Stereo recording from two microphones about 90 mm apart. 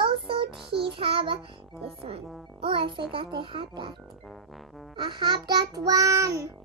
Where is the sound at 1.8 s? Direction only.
90° right; by 3.0 s 70° right (ahead or behind).